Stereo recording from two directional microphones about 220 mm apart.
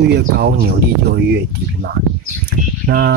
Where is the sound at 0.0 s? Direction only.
50° right (ahead or behind).